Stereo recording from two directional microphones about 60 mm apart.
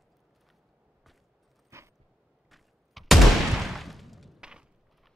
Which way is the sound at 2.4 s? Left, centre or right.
Centre.